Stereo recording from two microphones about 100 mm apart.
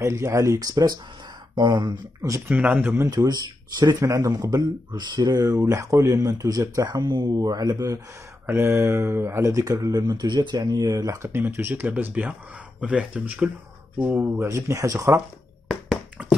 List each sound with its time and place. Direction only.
0.0 s speech: 30° right (ahead or behind)
1.5 s speech: 50° right (ahead or behind)
2.2 s speech: 30° right (ahead or behind)
2.5 s speech: 15° right (ahead or behind)
3.1 s speech: 40° right (ahead or behind)
4.9 s speech: 45° right (ahead or behind)
8.5 s speech: 25° right (ahead or behind)
14.3 s speech: 30° right (ahead or behind)
16.2 s a sound: 15° right (ahead or behind)